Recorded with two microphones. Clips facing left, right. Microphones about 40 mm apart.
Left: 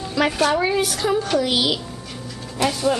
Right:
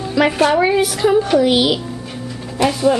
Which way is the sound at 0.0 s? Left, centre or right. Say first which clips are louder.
Right 5 dB; centre.